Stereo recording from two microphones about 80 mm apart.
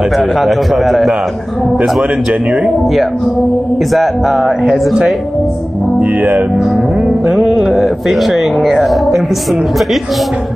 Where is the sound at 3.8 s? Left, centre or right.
Centre.